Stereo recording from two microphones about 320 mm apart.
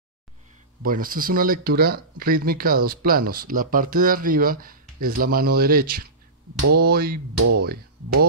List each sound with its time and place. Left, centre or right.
0.8 s speech: right
7.3 s speech: right